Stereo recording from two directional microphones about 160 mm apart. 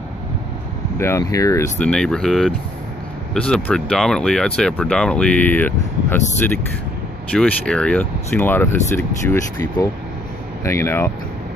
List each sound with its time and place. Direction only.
0.9 s speech: 15° left (ahead or behind)
1.8 s speech: 5° left (ahead or behind)